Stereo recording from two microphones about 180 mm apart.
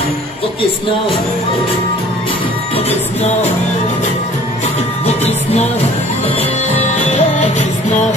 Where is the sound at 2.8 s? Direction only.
35° left (ahead or behind).